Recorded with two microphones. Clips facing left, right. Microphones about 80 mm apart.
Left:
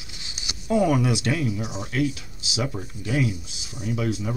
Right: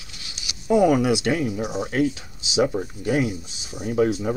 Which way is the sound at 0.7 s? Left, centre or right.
Right.